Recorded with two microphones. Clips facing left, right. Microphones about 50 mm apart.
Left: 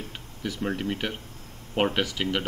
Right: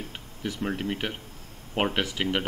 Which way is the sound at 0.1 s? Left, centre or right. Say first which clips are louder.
Even; centre.